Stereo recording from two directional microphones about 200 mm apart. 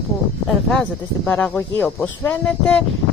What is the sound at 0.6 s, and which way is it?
Speech, 5° left (ahead or behind).